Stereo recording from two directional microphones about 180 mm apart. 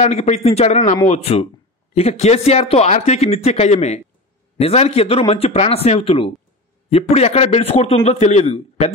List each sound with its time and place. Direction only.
0.0 s speech: 40° left (ahead or behind)